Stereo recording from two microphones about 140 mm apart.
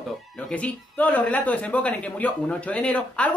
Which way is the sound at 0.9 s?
10° left (ahead or behind).